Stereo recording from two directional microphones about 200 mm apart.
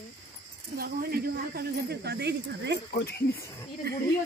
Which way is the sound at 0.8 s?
50° right (ahead or behind).